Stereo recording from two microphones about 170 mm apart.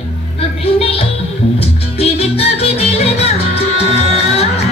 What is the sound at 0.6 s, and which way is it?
Music, 35° left (ahead or behind).